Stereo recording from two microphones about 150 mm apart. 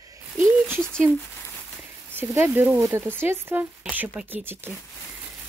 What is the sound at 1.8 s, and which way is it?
Speech, 15° right (ahead or behind).